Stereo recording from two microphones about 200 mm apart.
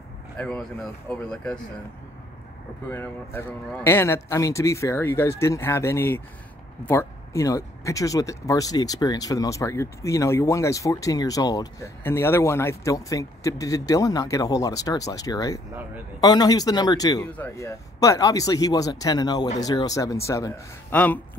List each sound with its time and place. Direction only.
0.4 s speech: 5° left (ahead or behind)
2.9 s speech: 10° left (ahead or behind)